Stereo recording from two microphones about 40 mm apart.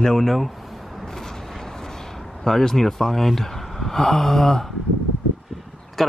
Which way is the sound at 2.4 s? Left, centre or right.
Centre.